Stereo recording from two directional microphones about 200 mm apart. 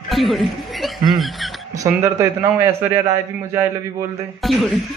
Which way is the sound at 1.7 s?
15° right (ahead or behind).